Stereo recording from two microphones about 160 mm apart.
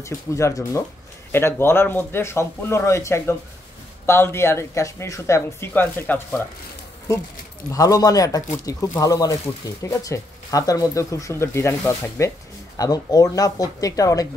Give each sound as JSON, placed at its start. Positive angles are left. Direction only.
{"t": 0.0, "sound": "speech", "side_deg": 20}
{"t": 7.7, "sound": "speech", "side_deg": 20}